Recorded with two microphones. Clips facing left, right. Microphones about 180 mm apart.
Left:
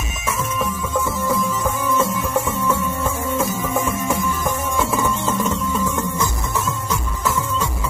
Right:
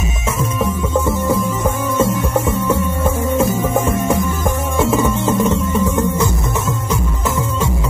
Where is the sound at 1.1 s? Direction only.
25° right (ahead or behind).